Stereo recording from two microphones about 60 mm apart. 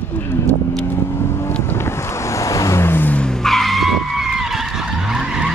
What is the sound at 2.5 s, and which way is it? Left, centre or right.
Vehicle, left.